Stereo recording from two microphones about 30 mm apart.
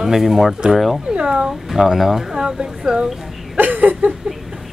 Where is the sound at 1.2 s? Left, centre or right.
Right.